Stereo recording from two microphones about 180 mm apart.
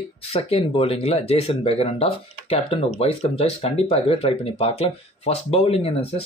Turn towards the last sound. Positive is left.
turn(degrees=35)  # may be behind; listen again after turning